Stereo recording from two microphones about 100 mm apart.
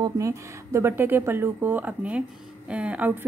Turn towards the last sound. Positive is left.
turn(degrees=-15)  # may be behind; listen again after turning